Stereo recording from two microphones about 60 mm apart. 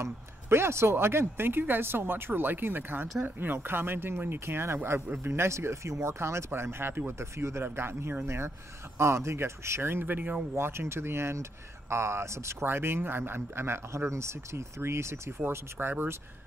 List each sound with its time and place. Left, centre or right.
0.0 s speech: right
10.5 s speech: right
12.6 s speech: right